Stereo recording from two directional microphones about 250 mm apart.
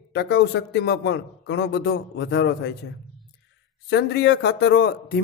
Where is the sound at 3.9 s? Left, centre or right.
Left.